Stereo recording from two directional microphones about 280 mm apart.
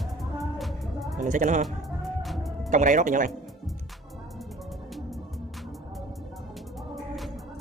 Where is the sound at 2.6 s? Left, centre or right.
Right.